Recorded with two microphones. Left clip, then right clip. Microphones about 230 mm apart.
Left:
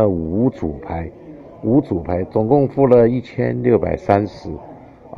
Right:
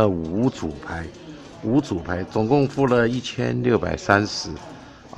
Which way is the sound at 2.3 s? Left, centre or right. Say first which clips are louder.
Left 4 dB; right.